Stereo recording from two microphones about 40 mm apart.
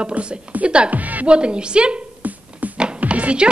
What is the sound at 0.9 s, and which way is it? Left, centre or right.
Speech, right.